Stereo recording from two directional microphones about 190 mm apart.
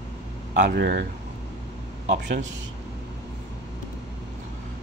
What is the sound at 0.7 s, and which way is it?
Speech, 60° right (ahead or behind).